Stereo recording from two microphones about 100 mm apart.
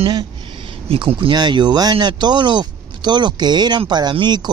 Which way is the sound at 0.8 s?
65° right (ahead or behind).